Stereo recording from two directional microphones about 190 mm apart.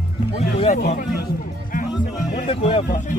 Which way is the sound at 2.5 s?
30° left (ahead or behind).